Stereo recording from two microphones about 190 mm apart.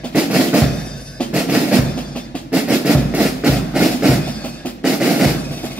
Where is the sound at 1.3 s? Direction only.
5° right (ahead or behind).